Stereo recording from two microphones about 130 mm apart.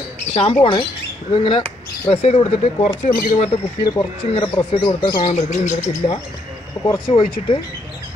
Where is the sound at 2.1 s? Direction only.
45° left (ahead or behind).